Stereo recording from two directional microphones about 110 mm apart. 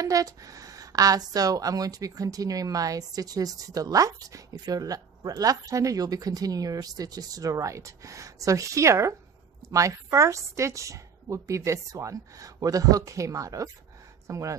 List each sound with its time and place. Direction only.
0.0 s a woman's voice: 30° right (ahead or behind)